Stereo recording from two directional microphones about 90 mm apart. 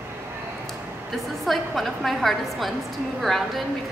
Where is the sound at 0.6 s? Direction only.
Centre (ahead or behind).